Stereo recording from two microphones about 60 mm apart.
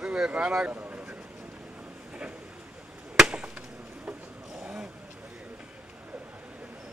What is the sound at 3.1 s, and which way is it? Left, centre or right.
Chop, centre.